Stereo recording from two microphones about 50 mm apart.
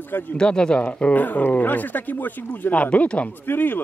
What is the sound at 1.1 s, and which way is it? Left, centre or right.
Speech, left.